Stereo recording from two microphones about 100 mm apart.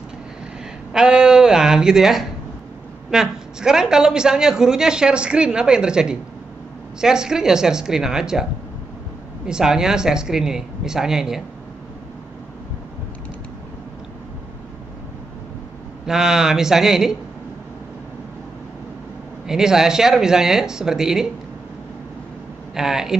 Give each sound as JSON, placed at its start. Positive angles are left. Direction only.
{"t": 0.9, "sound": "a woman's voice", "side_deg": -5}
{"t": 9.5, "sound": "speech", "side_deg": -5}
{"t": 16.1, "sound": "speech", "side_deg": -5}
{"t": 19.4, "sound": "speech", "side_deg": -5}
{"t": 22.8, "sound": "speech", "side_deg": -5}